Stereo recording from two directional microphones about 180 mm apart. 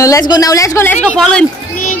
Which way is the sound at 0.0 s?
20° left (ahead or behind).